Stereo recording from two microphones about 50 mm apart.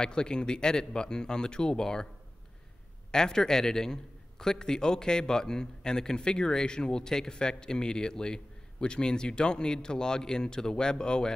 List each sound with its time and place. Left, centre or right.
0.0 s a man's voice: centre
3.1 s a man's voice: centre